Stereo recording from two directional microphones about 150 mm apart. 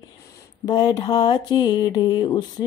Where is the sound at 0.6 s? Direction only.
25° left (ahead or behind).